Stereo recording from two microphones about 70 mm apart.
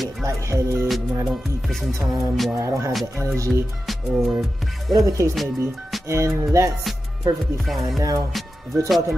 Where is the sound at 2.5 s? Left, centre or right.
Right.